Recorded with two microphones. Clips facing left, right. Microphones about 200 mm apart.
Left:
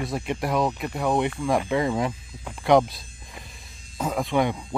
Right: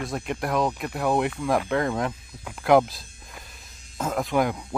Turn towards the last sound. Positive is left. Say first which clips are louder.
# even
turn(degrees=0)  # may be behind; listen again after turning